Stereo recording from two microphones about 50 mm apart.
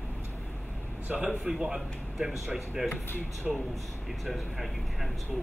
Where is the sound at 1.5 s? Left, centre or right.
Centre.